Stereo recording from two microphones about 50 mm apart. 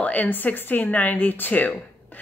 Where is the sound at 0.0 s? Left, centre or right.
Left.